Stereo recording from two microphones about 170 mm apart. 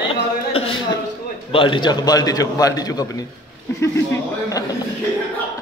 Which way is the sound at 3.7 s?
15° left (ahead or behind).